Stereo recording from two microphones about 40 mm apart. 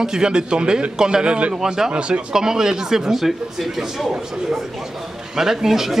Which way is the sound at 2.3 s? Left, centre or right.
Centre.